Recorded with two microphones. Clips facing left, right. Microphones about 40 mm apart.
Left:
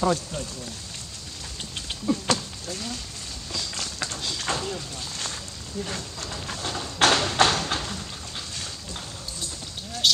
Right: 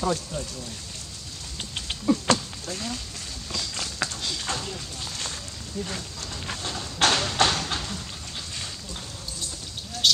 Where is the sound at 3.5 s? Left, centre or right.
Centre.